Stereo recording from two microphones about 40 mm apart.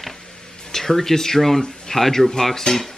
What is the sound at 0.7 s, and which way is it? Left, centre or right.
Speech, centre.